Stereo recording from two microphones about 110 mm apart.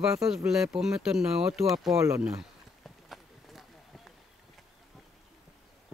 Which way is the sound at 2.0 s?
25° right (ahead or behind).